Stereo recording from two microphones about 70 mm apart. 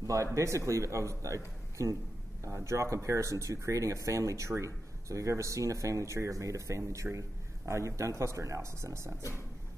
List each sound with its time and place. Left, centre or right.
0.0 s speech: right